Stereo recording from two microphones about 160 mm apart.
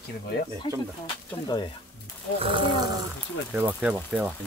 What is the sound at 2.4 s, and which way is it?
Speech, 35° right (ahead or behind).